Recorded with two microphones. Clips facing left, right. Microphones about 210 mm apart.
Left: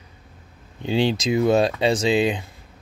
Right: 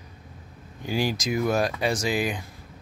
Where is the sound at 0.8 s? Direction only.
25° left (ahead or behind).